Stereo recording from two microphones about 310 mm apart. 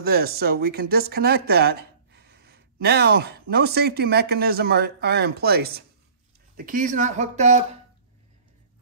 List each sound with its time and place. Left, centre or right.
0.0 s speech: right